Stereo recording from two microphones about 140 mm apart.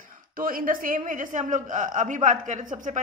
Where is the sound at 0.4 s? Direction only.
90° right.